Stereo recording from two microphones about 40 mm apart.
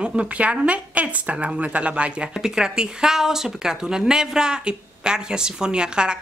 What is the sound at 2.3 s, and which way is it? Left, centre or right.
Speech, centre.